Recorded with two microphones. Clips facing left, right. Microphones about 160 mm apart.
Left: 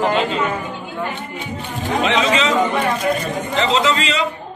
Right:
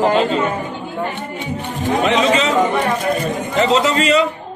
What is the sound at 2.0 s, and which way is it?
Speech, 45° right (ahead or behind).